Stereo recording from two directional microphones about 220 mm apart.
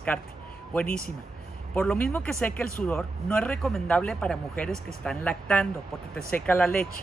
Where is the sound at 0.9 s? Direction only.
40° left (ahead or behind).